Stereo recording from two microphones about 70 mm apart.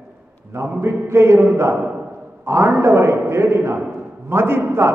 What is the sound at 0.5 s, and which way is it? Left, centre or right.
A man's voice, right.